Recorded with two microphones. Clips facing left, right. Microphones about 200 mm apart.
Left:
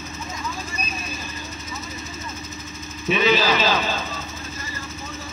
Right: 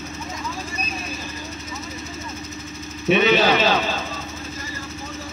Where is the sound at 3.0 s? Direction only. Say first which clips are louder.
Right 3 dB; 60° right (ahead or behind).